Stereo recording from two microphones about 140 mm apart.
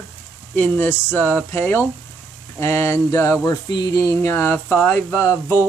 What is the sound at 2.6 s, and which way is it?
Speech, 20° left (ahead or behind).